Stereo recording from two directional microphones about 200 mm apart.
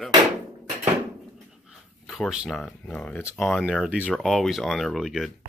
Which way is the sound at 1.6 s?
Centre (ahead or behind).